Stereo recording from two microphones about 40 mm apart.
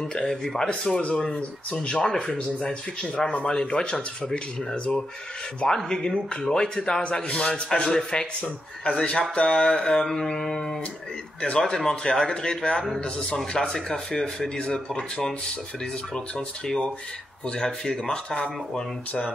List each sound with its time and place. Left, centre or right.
0.1 s a man's voice: left
0.4 s speech: centre
0.7 s a man's voice: left
1.9 s a man's voice: centre
5.7 s mantra: centre
6.0 s a man's voice: centre
8.9 s mantra: left
11.5 s a man's voice: centre
14.1 s mantra: centre
16.3 s mantra: centre
17.5 s a man's voice: centre